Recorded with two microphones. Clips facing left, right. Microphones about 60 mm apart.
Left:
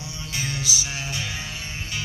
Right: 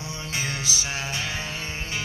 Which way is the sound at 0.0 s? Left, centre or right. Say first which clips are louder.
Right 1 dB; right.